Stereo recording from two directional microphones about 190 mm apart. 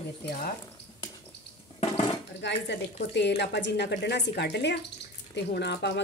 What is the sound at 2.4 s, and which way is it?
Speech, 65° left (ahead or behind).